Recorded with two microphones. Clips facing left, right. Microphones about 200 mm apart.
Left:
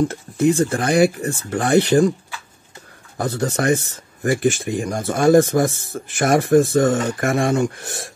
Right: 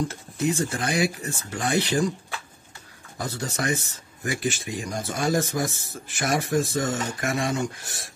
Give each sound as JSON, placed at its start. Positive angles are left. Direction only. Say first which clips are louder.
{"t": 0.1, "sound": "speech", "louder": "left 8 dB", "side_deg": 55}
{"t": 3.2, "sound": "speech", "louder": "left 8 dB", "side_deg": 55}